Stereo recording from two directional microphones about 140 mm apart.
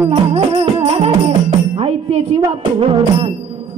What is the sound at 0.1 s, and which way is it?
Music, 40° right (ahead or behind).